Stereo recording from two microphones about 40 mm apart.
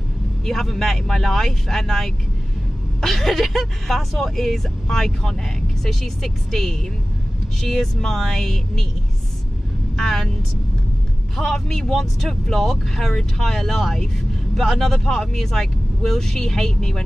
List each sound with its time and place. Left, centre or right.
0.5 s speech: centre
9.9 s speech: centre
11.3 s speech: centre